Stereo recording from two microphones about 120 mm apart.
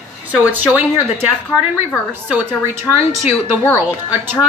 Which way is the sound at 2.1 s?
15° right (ahead or behind).